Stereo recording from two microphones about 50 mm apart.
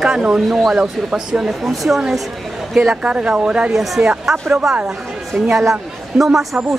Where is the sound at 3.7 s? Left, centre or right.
Centre.